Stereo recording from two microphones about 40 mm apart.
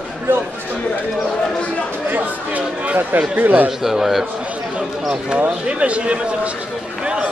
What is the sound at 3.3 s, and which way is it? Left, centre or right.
Speech, right.